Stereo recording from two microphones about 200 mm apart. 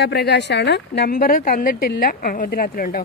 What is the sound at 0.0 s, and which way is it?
A woman's voice, 55° left (ahead or behind).